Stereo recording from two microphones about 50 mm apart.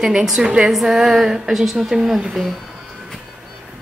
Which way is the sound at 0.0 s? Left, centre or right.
Centre.